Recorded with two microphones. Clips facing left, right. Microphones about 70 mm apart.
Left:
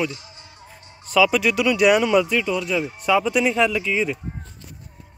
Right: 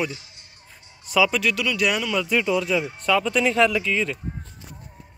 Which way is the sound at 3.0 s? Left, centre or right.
Centre.